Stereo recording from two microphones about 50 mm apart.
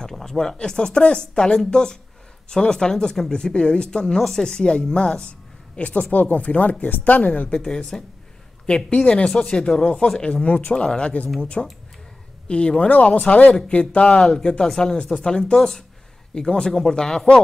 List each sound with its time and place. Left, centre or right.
0.1 s speech: centre; by 7.4 s left
7.4 s speech: centre
11.6 s speech: centre
12.4 s speech: left
14.2 s speech: centre